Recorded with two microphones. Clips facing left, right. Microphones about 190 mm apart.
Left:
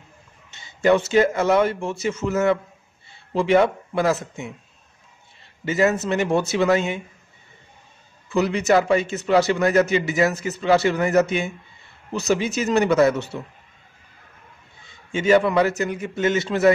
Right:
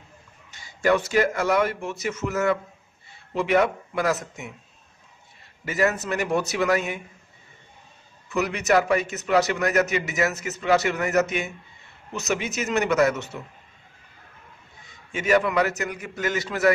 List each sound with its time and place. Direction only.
0.5 s a man's voice: 25° left (ahead or behind)
5.7 s a man's voice: 25° left (ahead or behind)
8.3 s a man's voice: 30° left (ahead or behind)
14.9 s a man's voice: 30° left (ahead or behind)